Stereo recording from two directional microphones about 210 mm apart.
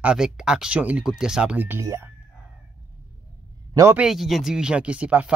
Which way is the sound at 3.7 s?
10° right (ahead or behind).